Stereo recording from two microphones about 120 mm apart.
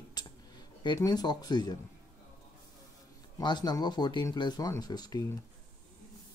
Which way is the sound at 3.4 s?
35° left (ahead or behind).